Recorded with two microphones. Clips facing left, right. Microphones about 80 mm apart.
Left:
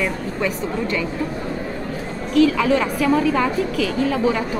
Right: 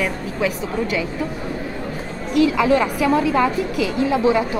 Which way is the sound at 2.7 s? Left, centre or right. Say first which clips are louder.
Right 1 dB; centre.